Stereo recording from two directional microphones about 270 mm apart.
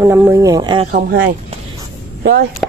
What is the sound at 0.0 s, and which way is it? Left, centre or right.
Speech, centre.